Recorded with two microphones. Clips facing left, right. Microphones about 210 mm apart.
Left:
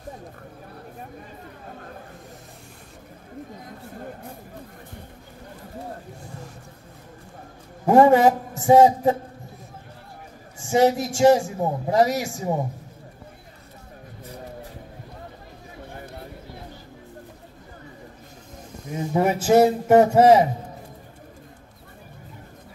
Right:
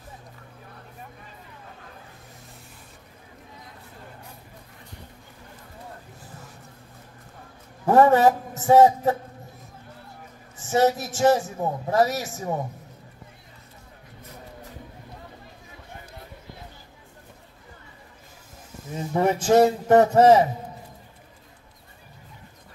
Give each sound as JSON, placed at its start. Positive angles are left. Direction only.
{"t": 4.0, "sound": "a sound", "side_deg": 50}
{"t": 7.8, "sound": "a man's voice", "side_deg": 15}
{"t": 10.6, "sound": "a man's voice", "side_deg": 15}
{"t": 18.9, "sound": "a man's voice", "side_deg": 10}